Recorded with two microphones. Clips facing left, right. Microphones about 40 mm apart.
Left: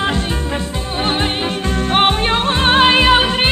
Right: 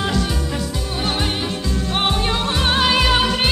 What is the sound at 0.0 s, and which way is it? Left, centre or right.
Music, left.